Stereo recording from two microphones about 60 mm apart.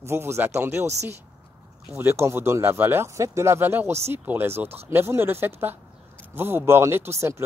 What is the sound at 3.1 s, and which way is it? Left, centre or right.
Speech, right.